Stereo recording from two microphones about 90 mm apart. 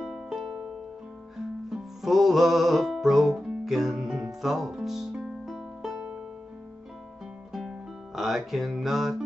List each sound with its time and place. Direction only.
0.0 s keyboard: 5° right (ahead or behind)
1.7 s music: 5° right (ahead or behind)
8.2 s music: 5° right (ahead or behind)